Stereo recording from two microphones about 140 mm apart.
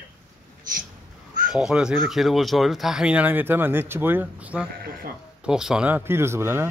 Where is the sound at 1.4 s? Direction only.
5° right (ahead or behind).